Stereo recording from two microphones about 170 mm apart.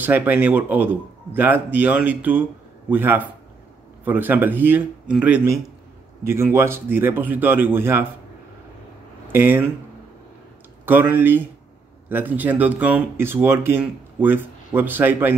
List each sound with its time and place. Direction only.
0.0 s speech: 10° right (ahead or behind)
9.3 s speech: 15° right (ahead or behind)
10.9 s speech: 10° right (ahead or behind)